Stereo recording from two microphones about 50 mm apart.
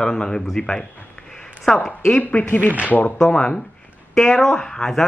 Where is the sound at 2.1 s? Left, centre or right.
Left.